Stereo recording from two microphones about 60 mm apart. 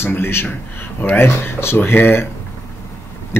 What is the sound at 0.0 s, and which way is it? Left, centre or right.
A man's voice, left.